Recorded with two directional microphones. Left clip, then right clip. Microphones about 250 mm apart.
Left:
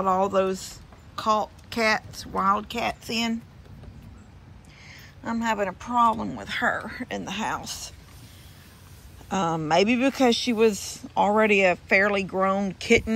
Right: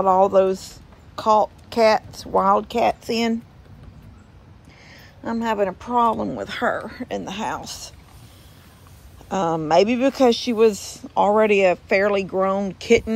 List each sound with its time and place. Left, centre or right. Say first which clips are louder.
0.0 s speech: right 7 dB; centre
5.2 s speech: right 4 dB; centre
9.3 s speech: right 5 dB; centre